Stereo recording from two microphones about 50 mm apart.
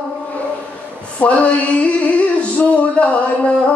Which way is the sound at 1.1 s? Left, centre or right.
Left.